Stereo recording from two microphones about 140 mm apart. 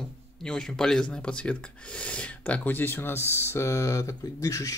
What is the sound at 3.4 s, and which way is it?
Speech, 20° left (ahead or behind).